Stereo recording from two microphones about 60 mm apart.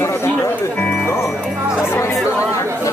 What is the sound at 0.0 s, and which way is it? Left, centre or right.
Music, left.